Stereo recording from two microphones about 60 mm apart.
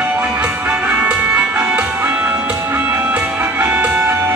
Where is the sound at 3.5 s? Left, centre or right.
Right.